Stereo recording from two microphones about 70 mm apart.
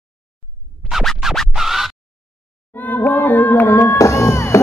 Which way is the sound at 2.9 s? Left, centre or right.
Left.